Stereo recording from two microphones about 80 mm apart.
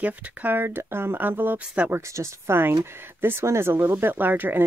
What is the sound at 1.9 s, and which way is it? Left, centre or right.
Speech, right.